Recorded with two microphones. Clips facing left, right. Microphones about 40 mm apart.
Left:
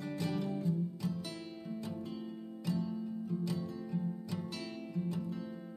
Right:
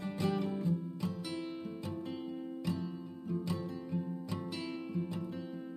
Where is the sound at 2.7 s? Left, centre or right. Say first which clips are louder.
Left 5 dB; right.